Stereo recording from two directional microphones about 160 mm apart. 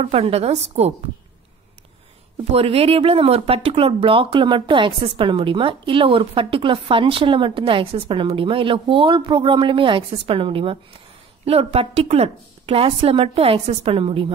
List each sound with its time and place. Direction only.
0.0 s speech: 40° right (ahead or behind)
2.5 s speech: 40° right (ahead or behind)